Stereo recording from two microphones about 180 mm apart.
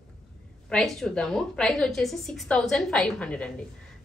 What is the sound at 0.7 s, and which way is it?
A woman's voice, 5° left (ahead or behind).